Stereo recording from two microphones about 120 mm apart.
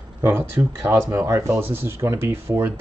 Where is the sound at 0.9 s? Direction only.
20° right (ahead or behind).